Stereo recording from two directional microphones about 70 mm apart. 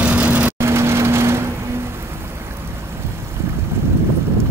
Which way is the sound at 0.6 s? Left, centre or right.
Right.